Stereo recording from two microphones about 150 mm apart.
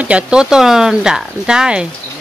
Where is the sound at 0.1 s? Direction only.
5° right (ahead or behind).